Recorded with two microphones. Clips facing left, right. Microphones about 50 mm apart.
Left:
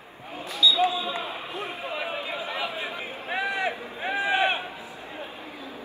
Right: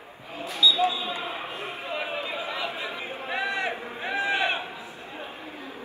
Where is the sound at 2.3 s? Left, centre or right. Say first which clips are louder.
Even; left.